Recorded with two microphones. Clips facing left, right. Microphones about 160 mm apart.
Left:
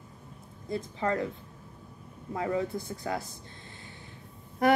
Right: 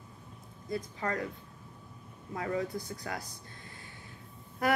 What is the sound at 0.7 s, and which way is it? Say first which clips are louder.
Speech: left 4 dB; 25° left (ahead or behind).